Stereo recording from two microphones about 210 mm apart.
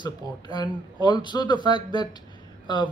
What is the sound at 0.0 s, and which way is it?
Speech, 20° left (ahead or behind).